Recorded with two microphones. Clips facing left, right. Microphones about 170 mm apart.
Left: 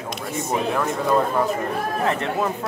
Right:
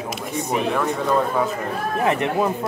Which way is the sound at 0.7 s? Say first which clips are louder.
Left 1 dB; centre (ahead or behind).